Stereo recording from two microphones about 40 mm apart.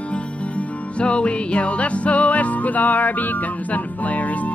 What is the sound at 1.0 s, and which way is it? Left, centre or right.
Music, left.